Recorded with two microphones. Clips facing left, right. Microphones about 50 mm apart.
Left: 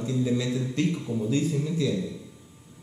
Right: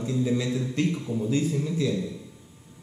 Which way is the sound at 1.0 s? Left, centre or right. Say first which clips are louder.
Even; centre.